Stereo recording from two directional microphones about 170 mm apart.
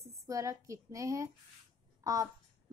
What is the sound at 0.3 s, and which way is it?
A woman's voice, 20° right (ahead or behind).